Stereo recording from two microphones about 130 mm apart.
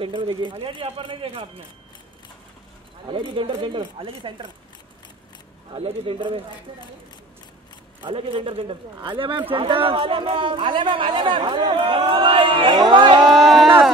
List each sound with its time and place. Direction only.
0.0 s speech: 40° right (ahead or behind)
3.1 s speech: 40° right (ahead or behind)
5.7 s a man's voice: 40° right (ahead or behind)
8.0 s a man's voice: 45° right (ahead or behind)
13.3 s speech: centre (ahead or behind)